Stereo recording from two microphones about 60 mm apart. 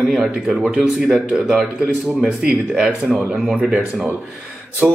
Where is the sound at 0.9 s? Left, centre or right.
Centre.